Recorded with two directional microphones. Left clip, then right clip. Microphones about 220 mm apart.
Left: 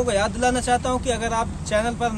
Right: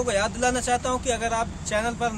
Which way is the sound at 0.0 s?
10° right (ahead or behind).